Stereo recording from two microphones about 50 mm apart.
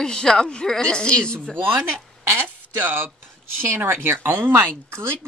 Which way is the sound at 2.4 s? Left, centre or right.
Right.